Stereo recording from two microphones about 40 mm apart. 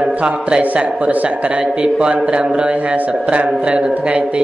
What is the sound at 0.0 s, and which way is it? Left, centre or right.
Speech, right.